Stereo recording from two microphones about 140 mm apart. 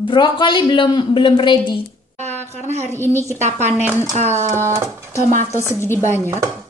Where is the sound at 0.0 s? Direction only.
35° left (ahead or behind).